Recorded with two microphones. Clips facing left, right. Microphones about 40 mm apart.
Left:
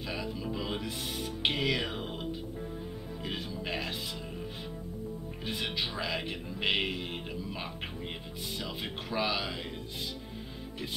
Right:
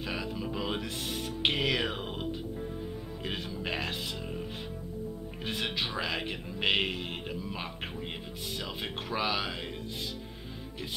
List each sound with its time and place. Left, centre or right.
0.0 s music: centre
3.3 s speech: centre
5.6 s music: centre